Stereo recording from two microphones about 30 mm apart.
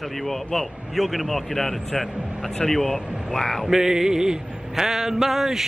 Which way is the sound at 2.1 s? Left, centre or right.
Right.